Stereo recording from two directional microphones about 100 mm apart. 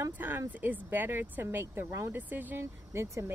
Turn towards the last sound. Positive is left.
turn(degrees=-25)  # may be behind; listen again after turning